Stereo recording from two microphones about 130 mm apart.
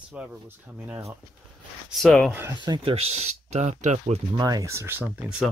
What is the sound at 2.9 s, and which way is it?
Speech, 50° right (ahead or behind).